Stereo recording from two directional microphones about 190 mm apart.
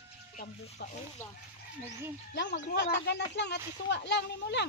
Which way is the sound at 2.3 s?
65° left (ahead or behind).